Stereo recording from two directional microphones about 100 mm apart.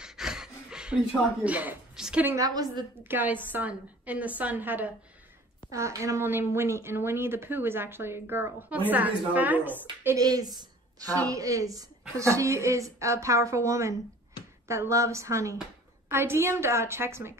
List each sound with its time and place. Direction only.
0.0 s a sound: 5° right (ahead or behind)
2.3 s a woman's voice: 40° right (ahead or behind)
3.0 s a woman's voice: 20° right (ahead or behind)
5.7 s speech: 30° right (ahead or behind)
10.1 s a woman's voice: 40° right (ahead or behind)